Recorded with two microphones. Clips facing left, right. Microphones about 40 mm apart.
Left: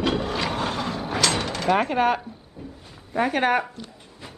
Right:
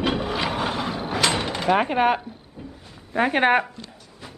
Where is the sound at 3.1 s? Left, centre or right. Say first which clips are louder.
Right 2 dB; right.